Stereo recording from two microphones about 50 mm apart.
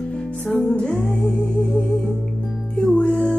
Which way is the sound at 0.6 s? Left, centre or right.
Centre.